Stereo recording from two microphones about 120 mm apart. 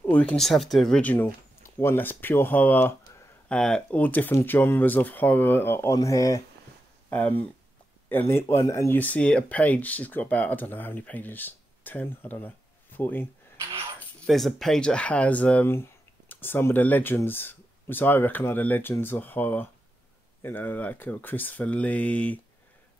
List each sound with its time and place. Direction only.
0.0 s speech: 15° left (ahead or behind)
0.4 s speech: centre (ahead or behind)
1.0 s speech: 15° left (ahead or behind)
7.1 s speech: 15° left (ahead or behind)
14.2 s speech: centre (ahead or behind)